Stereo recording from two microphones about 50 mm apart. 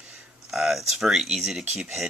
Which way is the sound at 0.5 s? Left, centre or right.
Centre.